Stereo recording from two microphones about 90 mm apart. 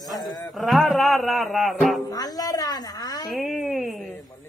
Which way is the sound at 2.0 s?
45° left (ahead or behind).